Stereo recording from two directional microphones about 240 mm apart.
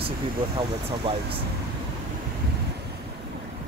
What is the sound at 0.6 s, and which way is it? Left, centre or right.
Speech, right.